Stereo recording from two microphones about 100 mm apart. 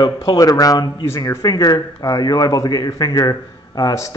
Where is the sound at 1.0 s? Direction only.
25° left (ahead or behind).